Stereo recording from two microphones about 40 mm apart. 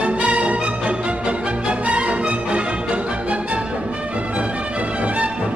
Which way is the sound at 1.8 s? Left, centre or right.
Right.